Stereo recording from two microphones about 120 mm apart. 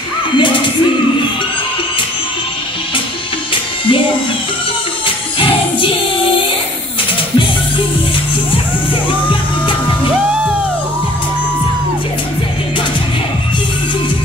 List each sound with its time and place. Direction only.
0.4 s music: 45° left (ahead or behind)
5.0 s music: 45° left (ahead or behind)